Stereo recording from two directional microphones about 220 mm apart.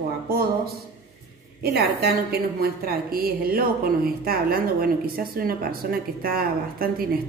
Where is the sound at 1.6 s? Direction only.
45° right (ahead or behind).